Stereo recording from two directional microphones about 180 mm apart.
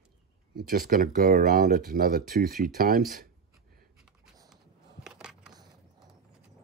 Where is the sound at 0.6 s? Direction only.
55° right (ahead or behind).